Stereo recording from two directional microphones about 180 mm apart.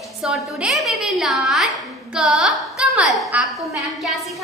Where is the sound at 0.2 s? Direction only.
5° right (ahead or behind).